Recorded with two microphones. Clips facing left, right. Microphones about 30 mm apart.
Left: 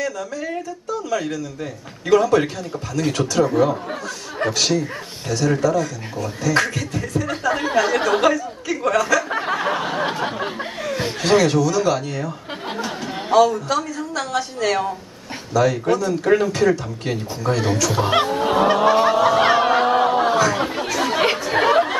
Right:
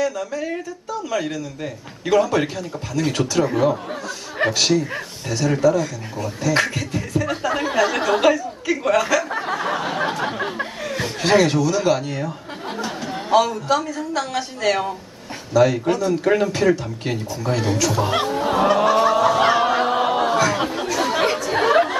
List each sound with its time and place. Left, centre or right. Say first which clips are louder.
0.0 s speech: right 2 dB; centre
9.3 s speech: left 2 dB; centre
9.8 s speech: even; centre
10.4 s a sound: even; centre
11.1 s speech: even; centre
12.8 s a sound: even; centre
13.3 s speech: left 2 dB; centre
17.9 s speech: left 2 dB; left
18.2 s speech: left 1 dB; centre
20.3 s speech: left 1 dB; centre
20.9 s chatter: right 1 dB; centre
21.5 s chatter: left 2 dB; centre